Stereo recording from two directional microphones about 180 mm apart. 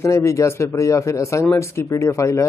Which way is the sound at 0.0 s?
15° left (ahead or behind).